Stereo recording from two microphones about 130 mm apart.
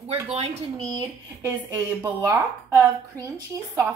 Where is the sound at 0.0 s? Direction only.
55° right (ahead or behind).